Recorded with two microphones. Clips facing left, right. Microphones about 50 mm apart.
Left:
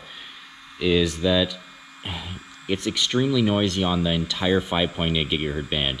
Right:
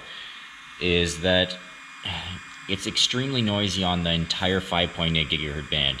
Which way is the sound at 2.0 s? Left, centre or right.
Right.